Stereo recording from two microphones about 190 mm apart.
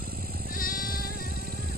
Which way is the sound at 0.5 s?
45° left (ahead or behind).